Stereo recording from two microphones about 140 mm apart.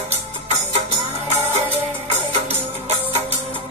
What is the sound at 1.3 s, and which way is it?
Music, 50° right (ahead or behind).